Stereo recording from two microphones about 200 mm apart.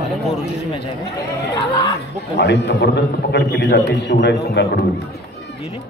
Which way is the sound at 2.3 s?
60° left (ahead or behind).